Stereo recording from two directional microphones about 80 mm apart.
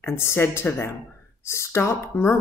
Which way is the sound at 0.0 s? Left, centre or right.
Left.